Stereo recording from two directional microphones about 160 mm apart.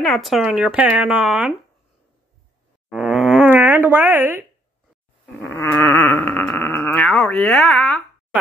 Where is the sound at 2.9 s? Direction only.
5° right (ahead or behind).